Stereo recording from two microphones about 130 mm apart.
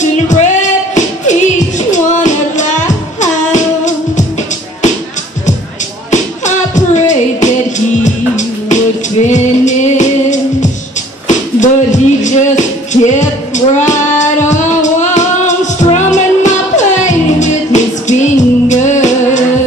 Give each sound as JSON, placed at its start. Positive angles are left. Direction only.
{"t": 0.0, "sound": "music", "side_deg": 70}
{"t": 6.0, "sound": "music", "side_deg": 70}
{"t": 11.2, "sound": "a sound", "side_deg": 70}
{"t": 13.7, "sound": "child singing", "side_deg": 70}